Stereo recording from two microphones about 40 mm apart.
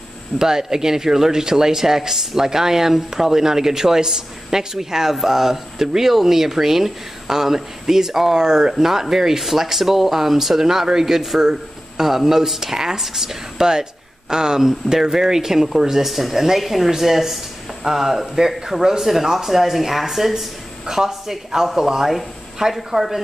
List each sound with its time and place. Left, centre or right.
0.4 s speech: centre